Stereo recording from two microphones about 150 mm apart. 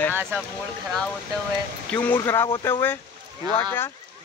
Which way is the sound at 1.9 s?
10° left (ahead or behind).